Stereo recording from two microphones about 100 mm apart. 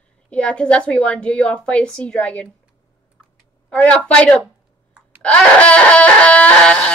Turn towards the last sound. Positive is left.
turn(degrees=10)  # may be behind; listen again after turning